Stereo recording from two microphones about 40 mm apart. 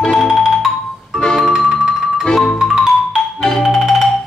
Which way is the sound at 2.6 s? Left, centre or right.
Centre.